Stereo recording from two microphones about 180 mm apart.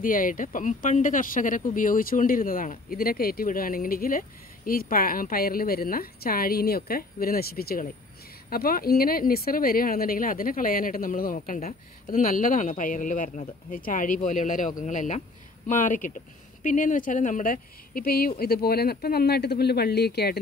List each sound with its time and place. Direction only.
0.0 s a woman's voice: 50° left (ahead or behind)